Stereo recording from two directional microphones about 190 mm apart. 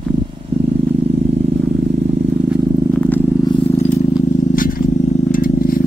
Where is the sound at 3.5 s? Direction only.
30° left (ahead or behind).